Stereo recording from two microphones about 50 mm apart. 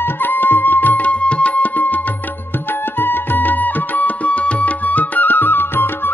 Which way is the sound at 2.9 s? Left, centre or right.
Left.